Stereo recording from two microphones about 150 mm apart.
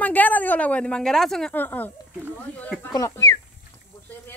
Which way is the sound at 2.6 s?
10° left (ahead or behind).